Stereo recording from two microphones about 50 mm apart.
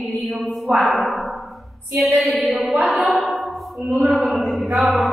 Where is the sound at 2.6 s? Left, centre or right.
Right.